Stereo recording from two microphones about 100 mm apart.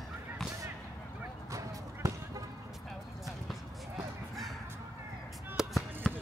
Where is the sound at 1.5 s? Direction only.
35° right (ahead or behind).